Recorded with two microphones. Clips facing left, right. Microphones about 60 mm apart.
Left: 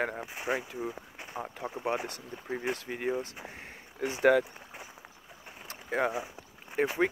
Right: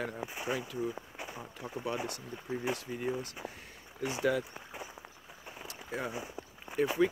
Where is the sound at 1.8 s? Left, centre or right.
Left.